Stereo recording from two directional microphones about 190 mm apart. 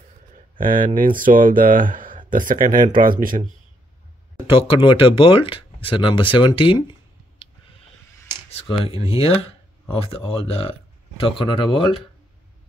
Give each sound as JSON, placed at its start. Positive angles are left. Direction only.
{"t": 0.6, "sound": "speech", "side_deg": -45}
{"t": 4.5, "sound": "speech", "side_deg": 30}
{"t": 8.5, "sound": "speech", "side_deg": 30}